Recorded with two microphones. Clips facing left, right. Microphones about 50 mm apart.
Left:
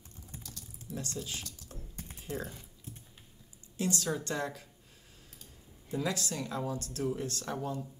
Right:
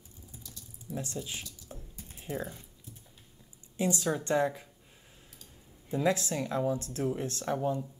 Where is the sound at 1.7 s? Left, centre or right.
Centre.